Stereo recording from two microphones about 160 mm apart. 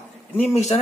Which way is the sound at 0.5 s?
45° left (ahead or behind).